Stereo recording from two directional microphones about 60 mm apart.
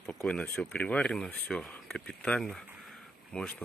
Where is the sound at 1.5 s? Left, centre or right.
Centre.